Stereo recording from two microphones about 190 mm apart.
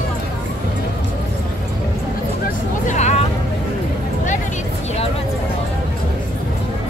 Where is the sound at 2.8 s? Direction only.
35° left (ahead or behind).